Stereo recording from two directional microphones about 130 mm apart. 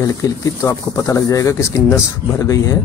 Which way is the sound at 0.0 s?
25° left (ahead or behind).